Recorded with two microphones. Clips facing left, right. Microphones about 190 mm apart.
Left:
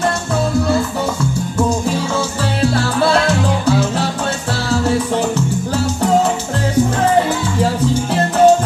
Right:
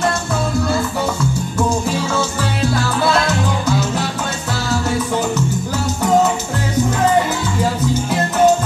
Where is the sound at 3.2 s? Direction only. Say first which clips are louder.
Left 3 dB; 30° left (ahead or behind).